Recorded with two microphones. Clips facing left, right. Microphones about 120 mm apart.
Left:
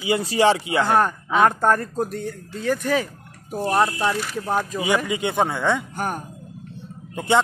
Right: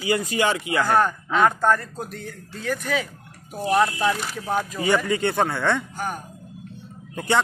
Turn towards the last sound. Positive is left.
turn(degrees=20)  # may be behind; listen again after turning